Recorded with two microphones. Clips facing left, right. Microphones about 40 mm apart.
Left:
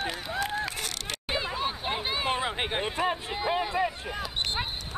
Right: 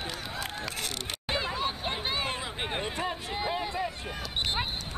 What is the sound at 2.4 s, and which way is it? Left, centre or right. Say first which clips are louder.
Speech: left 4 dB; left.